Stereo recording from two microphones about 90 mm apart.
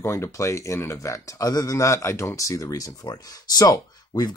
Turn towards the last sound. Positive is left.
turn(degrees=45)  # may be behind; listen again after turning